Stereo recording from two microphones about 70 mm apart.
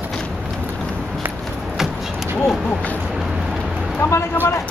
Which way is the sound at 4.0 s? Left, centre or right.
Left.